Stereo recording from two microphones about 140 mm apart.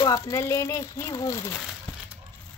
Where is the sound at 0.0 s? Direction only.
20° left (ahead or behind).